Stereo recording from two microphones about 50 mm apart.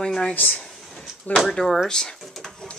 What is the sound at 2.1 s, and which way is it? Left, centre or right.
Speech, centre.